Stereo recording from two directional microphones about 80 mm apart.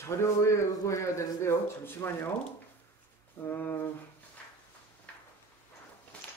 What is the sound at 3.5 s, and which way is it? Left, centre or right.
Speech, left.